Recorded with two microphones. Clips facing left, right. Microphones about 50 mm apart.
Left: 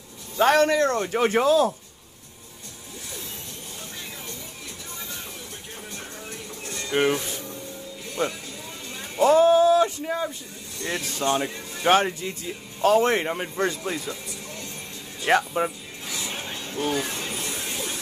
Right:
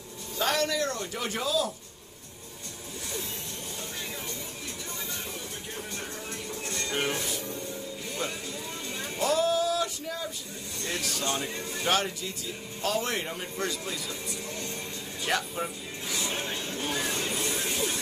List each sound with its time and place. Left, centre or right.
0.4 s speech: left
6.6 s a sound: centre
6.9 s speech: centre
9.2 s male singing: left
10.8 s speech: left
15.2 s speech: left
16.3 s a sound: centre